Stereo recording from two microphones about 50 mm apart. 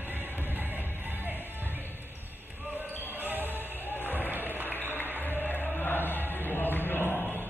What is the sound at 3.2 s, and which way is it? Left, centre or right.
Basketball bounce, right.